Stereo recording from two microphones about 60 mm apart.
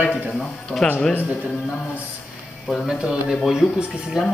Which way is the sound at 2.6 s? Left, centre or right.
Centre.